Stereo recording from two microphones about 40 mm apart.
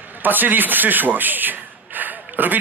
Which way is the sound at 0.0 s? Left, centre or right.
Right.